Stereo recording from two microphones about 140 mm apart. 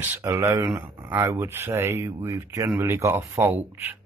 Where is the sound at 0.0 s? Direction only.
20° right (ahead or behind).